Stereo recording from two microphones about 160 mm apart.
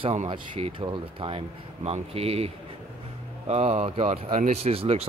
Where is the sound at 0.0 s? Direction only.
40° right (ahead or behind).